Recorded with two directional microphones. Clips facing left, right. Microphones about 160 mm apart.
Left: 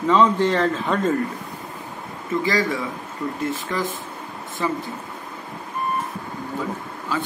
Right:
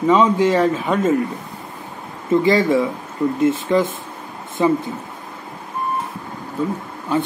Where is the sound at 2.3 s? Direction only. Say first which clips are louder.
Right 7 dB; 25° right (ahead or behind).